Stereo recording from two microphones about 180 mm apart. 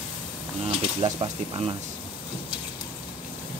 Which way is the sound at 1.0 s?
30° right (ahead or behind).